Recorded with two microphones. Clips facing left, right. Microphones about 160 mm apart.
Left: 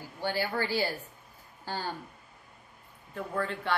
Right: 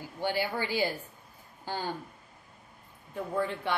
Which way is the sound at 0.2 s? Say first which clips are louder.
Even; 15° right (ahead or behind).